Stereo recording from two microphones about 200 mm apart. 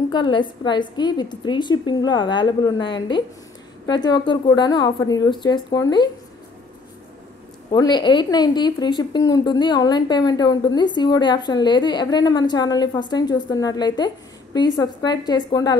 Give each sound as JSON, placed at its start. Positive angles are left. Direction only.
{"t": 0.1, "sound": "a woman's voice", "side_deg": 25}
{"t": 7.7, "sound": "a woman's voice", "side_deg": 20}